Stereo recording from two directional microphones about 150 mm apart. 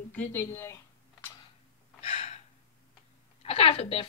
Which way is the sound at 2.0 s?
45° left (ahead or behind).